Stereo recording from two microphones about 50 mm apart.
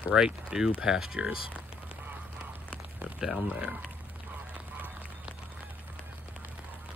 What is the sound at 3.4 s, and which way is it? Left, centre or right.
Speech, right.